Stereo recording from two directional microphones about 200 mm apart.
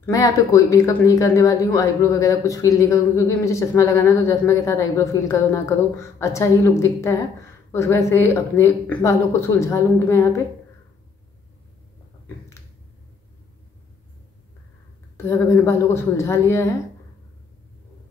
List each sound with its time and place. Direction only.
0.0 s speech: 15° left (ahead or behind)
15.1 s speech: 15° left (ahead or behind)